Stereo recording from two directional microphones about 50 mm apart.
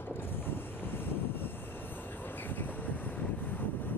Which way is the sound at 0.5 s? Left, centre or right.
Left.